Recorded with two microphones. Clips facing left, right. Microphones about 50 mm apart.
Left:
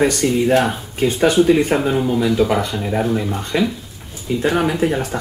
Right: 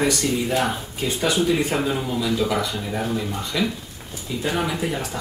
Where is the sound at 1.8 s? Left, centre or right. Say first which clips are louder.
Left 5 dB; centre.